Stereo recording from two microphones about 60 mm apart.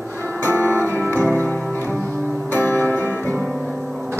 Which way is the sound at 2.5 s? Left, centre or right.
Left.